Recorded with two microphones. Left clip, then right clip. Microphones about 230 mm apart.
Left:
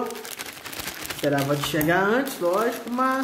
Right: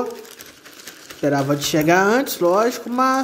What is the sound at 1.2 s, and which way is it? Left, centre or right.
A man's voice, right.